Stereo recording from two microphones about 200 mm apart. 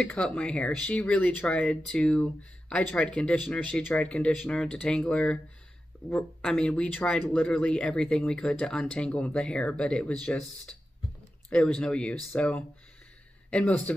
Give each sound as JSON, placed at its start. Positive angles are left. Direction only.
{"t": 0.0, "sound": "speech", "side_deg": 5}
{"t": 11.5, "sound": "speech", "side_deg": 5}